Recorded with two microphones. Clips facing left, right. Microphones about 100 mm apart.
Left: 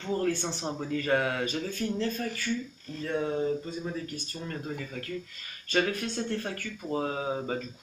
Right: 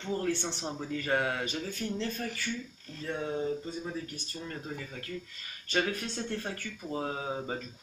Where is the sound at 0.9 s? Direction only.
15° right (ahead or behind).